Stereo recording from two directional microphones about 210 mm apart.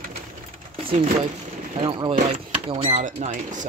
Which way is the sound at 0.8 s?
25° right (ahead or behind).